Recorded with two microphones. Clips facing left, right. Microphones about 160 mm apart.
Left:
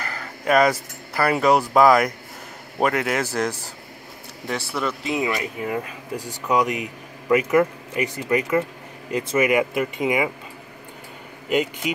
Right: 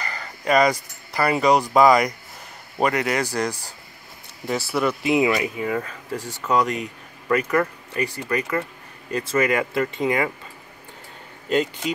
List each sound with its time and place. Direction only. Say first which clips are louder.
0.0 s a man's voice: left 1 dB; 5° left (ahead or behind)
4.5 s speech: right 3 dB; 5° right (ahead or behind)
5.8 s speech: even; 15° left (ahead or behind)
11.4 s speech: even; 15° left (ahead or behind)